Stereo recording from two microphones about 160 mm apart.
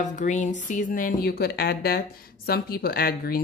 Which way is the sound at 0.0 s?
50° left (ahead or behind).